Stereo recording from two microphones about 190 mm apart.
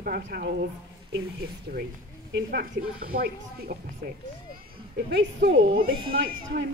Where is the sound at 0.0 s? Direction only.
55° right (ahead or behind).